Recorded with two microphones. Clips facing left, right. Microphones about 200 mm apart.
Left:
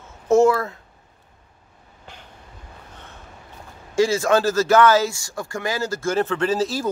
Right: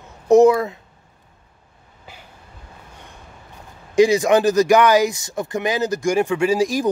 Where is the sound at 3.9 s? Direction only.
15° right (ahead or behind).